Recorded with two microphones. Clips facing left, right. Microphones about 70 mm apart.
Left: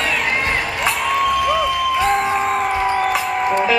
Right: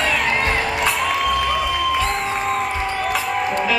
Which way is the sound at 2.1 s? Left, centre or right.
Centre.